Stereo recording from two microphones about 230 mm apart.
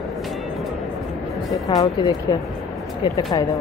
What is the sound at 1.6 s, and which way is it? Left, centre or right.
Speech, centre.